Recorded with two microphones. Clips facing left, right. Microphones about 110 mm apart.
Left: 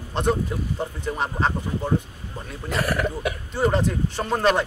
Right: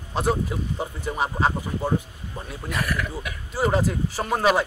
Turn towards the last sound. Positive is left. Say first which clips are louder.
# even
turn(degrees=-5)  # may be behind; listen again after turning